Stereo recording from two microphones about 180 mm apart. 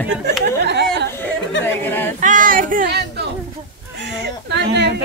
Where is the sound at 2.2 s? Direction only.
45° right (ahead or behind).